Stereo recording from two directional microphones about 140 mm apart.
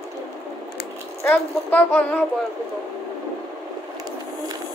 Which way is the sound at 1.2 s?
15° left (ahead or behind).